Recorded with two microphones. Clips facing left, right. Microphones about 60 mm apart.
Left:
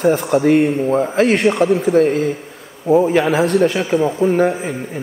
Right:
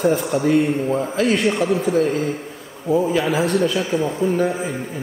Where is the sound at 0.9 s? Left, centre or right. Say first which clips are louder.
Left 5 dB; left.